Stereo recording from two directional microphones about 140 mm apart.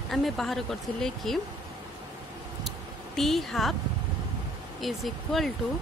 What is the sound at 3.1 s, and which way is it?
Speech, centre (ahead or behind).